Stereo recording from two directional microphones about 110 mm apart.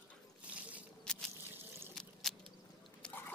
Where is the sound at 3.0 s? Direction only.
5° left (ahead or behind).